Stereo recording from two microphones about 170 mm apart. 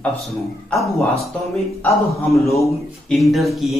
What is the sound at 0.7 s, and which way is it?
Speech, centre (ahead or behind).